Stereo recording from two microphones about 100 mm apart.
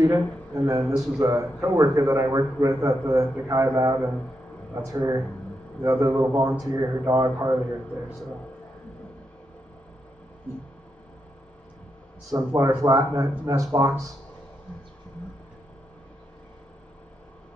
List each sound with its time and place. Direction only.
0.0 s a man's voice: 35° right (ahead or behind)
0.8 s a man's voice: centre (ahead or behind)
1.2 s a man's voice: 35° right (ahead or behind)
12.3 s a man's voice: 35° right (ahead or behind)